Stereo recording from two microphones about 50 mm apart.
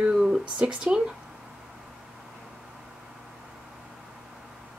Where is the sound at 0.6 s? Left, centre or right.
Right.